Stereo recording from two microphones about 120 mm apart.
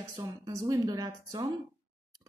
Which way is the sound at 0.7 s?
30° right (ahead or behind).